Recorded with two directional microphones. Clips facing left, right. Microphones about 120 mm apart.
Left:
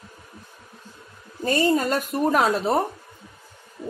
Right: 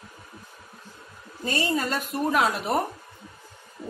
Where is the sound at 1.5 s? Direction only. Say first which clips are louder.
Left 6 dB; 45° left (ahead or behind).